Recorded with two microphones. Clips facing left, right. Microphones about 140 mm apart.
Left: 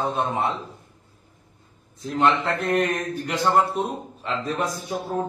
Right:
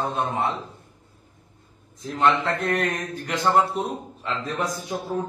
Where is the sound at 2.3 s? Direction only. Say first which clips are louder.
Left 1 dB; 5° left (ahead or behind).